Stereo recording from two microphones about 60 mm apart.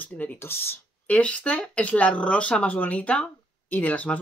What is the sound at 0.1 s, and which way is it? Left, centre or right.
Speech, left.